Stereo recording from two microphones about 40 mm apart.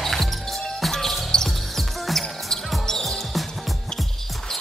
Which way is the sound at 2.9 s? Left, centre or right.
Centre.